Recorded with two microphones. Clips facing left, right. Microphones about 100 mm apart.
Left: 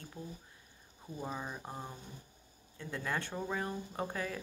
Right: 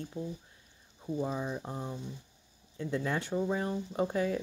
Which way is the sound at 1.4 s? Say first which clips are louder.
Right 6 dB; 5° left (ahead or behind).